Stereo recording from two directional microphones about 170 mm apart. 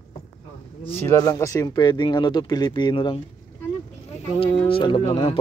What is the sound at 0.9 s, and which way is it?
Speech, 15° left (ahead or behind).